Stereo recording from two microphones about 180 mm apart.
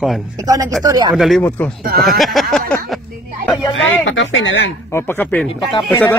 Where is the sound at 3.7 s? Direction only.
90° left.